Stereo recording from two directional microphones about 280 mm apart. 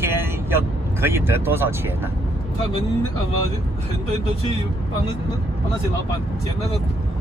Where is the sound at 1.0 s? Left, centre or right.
Centre.